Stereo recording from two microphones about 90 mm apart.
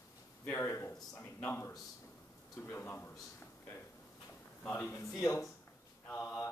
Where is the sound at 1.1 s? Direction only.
20° left (ahead or behind).